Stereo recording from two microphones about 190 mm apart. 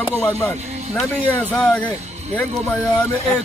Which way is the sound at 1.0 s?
5° left (ahead or behind).